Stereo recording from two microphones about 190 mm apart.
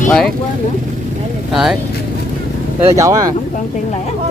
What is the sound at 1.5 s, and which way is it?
Speech, centre (ahead or behind).